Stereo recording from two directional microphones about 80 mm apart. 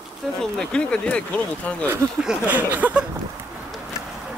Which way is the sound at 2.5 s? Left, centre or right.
Right.